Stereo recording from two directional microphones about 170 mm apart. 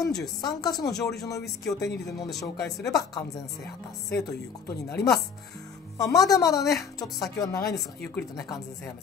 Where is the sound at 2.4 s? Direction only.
20° left (ahead or behind).